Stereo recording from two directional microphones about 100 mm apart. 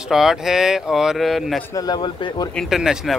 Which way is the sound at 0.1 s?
5° right (ahead or behind).